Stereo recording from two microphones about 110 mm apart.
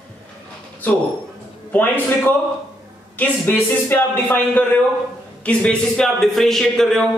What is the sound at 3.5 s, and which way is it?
A man's voice, 15° left (ahead or behind).